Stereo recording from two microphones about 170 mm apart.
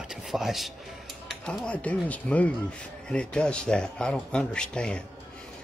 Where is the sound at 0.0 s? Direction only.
5° right (ahead or behind).